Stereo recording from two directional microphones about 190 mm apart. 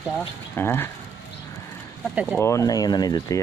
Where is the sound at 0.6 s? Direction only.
10° left (ahead or behind).